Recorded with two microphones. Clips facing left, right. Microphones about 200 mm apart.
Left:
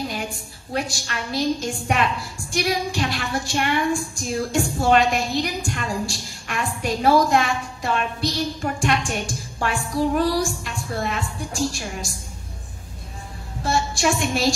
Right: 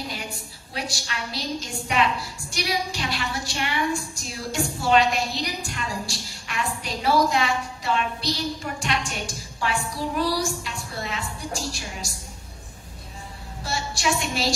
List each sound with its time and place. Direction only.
0.7 s a woman's voice: 50° left (ahead or behind)
13.7 s a woman's voice: 50° left (ahead or behind)